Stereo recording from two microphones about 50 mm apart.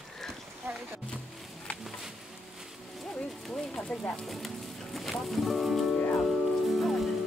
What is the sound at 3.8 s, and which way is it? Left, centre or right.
Speech, left.